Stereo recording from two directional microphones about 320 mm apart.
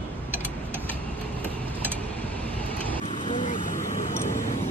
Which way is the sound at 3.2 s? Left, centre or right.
Centre.